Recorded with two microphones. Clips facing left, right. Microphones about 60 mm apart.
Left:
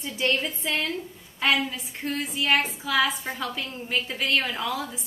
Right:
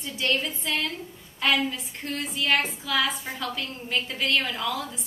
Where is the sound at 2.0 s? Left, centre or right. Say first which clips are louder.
Left 2 dB; centre.